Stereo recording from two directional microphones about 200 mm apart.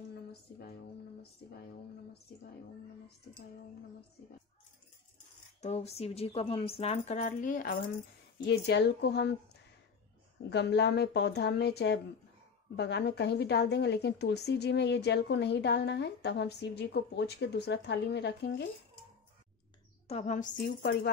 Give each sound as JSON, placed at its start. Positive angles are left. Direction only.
{"t": 0.3, "sound": "speech", "side_deg": 50}
{"t": 5.6, "sound": "speech", "side_deg": 30}
{"t": 8.5, "sound": "a woman's voice", "side_deg": 55}
{"t": 10.5, "sound": "a woman's voice", "side_deg": 55}
{"t": 20.1, "sound": "speech", "side_deg": 35}